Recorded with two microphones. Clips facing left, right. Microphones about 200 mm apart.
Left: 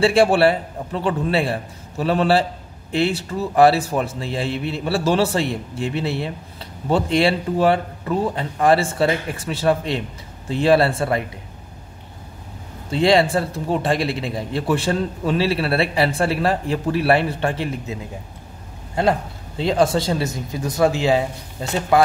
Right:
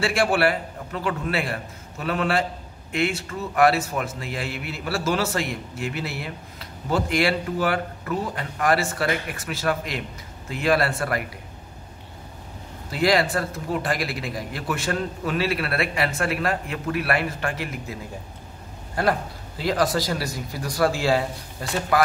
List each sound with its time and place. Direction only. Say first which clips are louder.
0.0 s a man's voice: left 6 dB; 30° left (ahead or behind)
12.9 s a man's voice: left 5 dB; 25° left (ahead or behind)
18.9 s a man's voice: left 4 dB; 25° left (ahead or behind)